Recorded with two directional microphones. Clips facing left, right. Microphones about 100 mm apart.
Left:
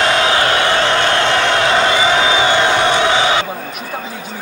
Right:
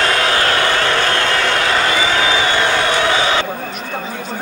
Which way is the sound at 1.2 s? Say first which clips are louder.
Left 3 dB; 20° left (ahead or behind).